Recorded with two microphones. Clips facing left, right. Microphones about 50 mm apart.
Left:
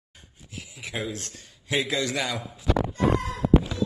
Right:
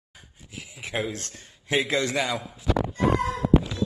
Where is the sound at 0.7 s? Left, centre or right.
Right.